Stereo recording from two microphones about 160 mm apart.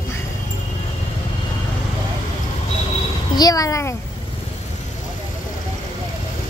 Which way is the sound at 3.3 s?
25° left (ahead or behind).